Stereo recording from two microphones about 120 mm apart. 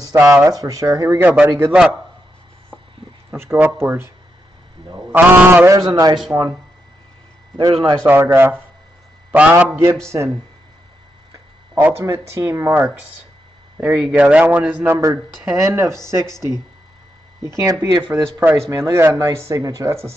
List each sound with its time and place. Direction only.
0.1 s speech: 25° right (ahead or behind)
1.7 s a man's voice: 10° right (ahead or behind)
3.3 s speech: 20° right (ahead or behind)
5.1 s a man's voice: 15° right (ahead or behind)
5.7 s speech: 30° right (ahead or behind)
7.7 s speech: 45° right (ahead or behind)
8.0 s a man's voice: 15° right (ahead or behind)
13.7 s a man's voice: 10° right (ahead or behind)
15.4 s speech: 25° right (ahead or behind)
18.1 s a man's voice: 15° right (ahead or behind)
18.7 s speech: 25° right (ahead or behind)